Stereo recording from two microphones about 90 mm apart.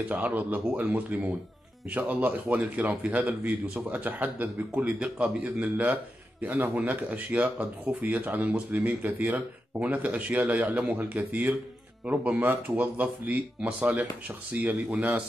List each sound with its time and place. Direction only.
0.1 s speech: 20° right (ahead or behind)